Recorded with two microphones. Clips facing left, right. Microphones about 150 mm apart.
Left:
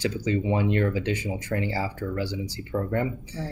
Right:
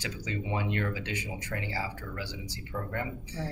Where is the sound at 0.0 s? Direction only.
35° left (ahead or behind).